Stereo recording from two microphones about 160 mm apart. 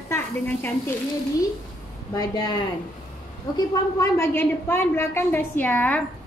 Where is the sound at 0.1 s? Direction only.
15° left (ahead or behind).